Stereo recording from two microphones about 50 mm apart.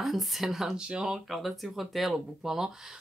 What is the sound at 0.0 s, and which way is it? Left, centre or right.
Speech, centre.